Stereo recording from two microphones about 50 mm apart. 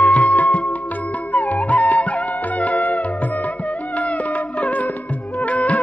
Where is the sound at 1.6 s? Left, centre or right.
Left.